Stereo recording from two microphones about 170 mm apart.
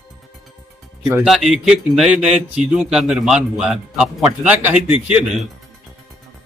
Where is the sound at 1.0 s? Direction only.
5° right (ahead or behind).